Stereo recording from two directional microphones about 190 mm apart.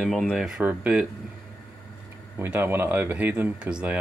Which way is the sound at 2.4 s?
10° right (ahead or behind).